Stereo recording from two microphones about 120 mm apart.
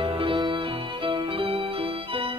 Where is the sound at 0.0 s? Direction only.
50° right (ahead or behind).